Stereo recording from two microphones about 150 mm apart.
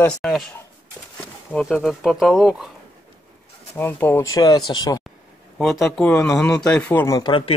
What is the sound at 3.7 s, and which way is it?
Speech, 15° left (ahead or behind).